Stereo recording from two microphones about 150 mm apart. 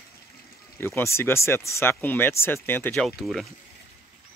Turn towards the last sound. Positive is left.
turn(degrees=0)  # may be behind; listen again after turning